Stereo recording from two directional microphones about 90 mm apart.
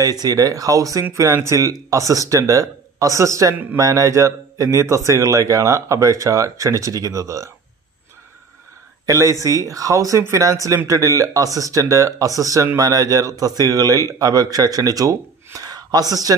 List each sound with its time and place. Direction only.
0.0 s speech: 40° right (ahead or behind)
9.0 s speech: 35° right (ahead or behind)